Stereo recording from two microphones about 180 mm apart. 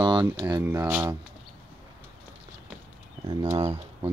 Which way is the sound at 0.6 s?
10° right (ahead or behind).